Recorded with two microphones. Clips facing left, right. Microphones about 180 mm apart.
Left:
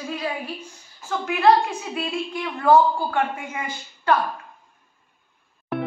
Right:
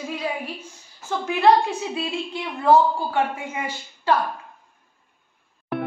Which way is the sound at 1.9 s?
25° right (ahead or behind).